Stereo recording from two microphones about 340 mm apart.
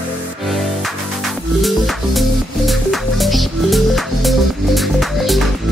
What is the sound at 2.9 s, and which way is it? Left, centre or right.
Music, centre.